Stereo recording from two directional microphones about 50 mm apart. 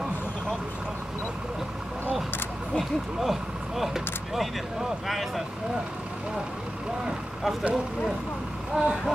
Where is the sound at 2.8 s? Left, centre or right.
Centre.